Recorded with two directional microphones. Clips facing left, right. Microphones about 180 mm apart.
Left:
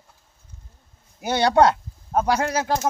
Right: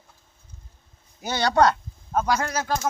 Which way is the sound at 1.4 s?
25° left (ahead or behind).